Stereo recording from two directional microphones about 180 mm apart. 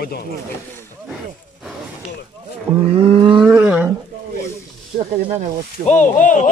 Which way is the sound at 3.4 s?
10° right (ahead or behind).